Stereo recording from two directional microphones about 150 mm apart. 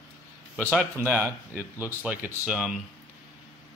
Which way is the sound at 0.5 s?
10° right (ahead or behind).